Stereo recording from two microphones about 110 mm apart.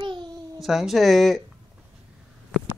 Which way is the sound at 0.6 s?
5° right (ahead or behind).